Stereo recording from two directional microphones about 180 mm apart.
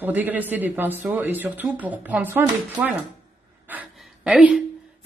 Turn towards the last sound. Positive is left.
turn(degrees=-5)  # may be behind; listen again after turning